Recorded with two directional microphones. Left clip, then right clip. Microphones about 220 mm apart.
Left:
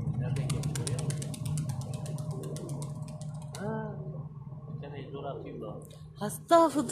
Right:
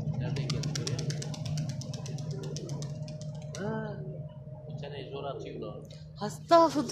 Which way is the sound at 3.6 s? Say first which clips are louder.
Right 1 dB; 45° right (ahead or behind).